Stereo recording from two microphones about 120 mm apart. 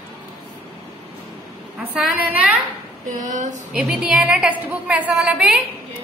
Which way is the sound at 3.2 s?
90° right.